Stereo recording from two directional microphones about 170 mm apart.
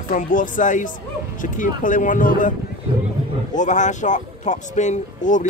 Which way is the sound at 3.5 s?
45° left (ahead or behind).